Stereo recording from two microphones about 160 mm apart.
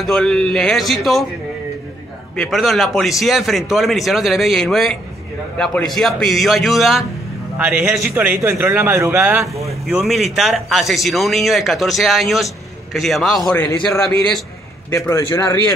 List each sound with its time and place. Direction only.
0.0 s speech: 5° left (ahead or behind)
2.3 s a man's voice: centre (ahead or behind)
13.5 s a man's voice: 15° left (ahead or behind)